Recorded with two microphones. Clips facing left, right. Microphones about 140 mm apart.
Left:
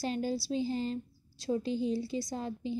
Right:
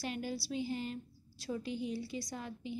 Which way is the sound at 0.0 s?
30° left (ahead or behind).